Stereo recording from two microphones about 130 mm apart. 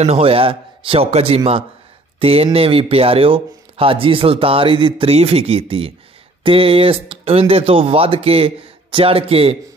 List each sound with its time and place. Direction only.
0.0 s speech: 50° right (ahead or behind)